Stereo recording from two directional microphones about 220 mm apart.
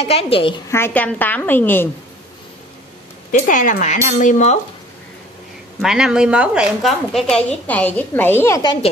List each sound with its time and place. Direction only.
0.0 s a woman's voice: 25° left (ahead or behind)
0.7 s a woman's voice: 10° left (ahead or behind)
3.3 s speech: 35° left (ahead or behind)
5.8 s a woman's voice: centre (ahead or behind); by 8.7 s 15° left (ahead or behind)